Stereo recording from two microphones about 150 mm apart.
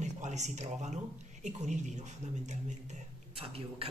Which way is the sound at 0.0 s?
50° right (ahead or behind).